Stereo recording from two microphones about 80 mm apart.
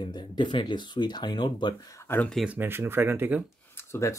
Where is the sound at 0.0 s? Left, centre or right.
Left.